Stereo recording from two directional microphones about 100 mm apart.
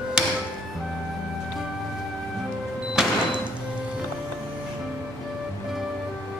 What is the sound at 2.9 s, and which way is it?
Music, 5° right (ahead or behind).